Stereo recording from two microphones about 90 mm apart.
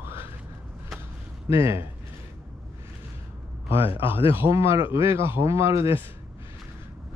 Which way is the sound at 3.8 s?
90° left.